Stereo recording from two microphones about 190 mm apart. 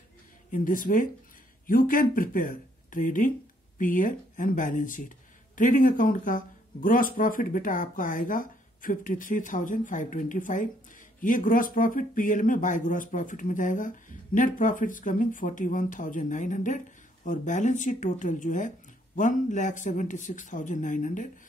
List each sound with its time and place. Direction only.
0.5 s a man's voice: 45° left (ahead or behind)